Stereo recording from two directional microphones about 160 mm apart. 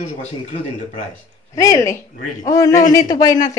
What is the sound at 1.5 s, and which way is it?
Speech, 20° left (ahead or behind).